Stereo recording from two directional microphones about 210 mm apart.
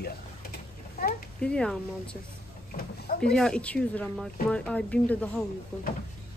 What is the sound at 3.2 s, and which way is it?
Speech, 5° left (ahead or behind).